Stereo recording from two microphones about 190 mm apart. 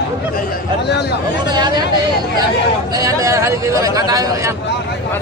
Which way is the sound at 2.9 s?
15° right (ahead or behind).